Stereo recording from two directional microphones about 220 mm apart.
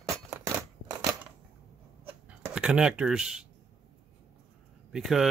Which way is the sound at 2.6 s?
5° right (ahead or behind).